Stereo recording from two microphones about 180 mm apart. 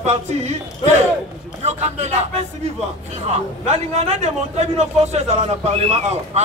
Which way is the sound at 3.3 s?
40° right (ahead or behind).